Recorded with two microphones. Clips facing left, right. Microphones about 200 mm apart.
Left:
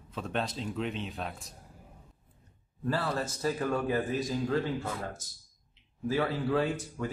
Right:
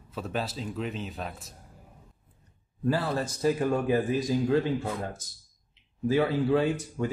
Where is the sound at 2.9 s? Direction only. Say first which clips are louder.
Right 4 dB; 15° right (ahead or behind).